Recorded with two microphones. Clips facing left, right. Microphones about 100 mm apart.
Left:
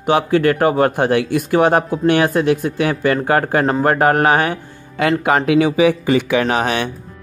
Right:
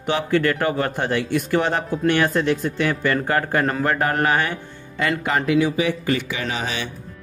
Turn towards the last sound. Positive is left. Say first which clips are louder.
# left 9 dB
turn(degrees=60)  # may be behind; listen again after turning